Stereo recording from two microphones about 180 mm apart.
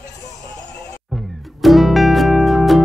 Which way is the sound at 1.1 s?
Centre (ahead or behind).